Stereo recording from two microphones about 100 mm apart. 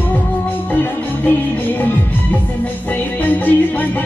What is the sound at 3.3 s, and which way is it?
Music, 20° left (ahead or behind).